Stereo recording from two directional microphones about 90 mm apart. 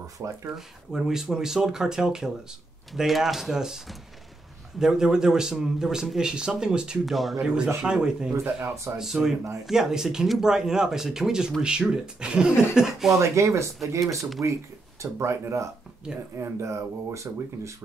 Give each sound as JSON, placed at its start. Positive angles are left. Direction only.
{"t": 0.2, "sound": "speech", "side_deg": -35}
{"t": 0.6, "sound": "a man's voice", "side_deg": -5}
{"t": 13.2, "sound": "speech", "side_deg": -35}